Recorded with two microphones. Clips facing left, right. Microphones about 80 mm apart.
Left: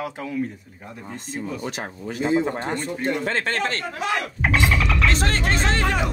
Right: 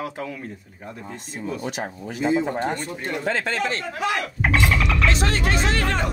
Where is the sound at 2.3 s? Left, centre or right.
Left.